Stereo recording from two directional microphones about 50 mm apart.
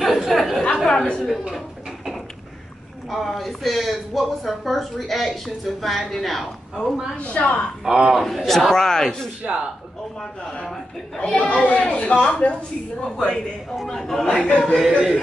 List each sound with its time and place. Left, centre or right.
0.0 s a sound: centre
0.8 s a sound: centre
3.1 s speech: centre
7.2 s a man's voice: left
7.8 s a man's voice: centre
8.1 s a man's voice: centre
11.3 s a man's voice: left; by 13.4 s centre
13.8 s speech: centre
14.2 s a man's voice: centre
14.6 s speech: centre
14.9 s speech: centre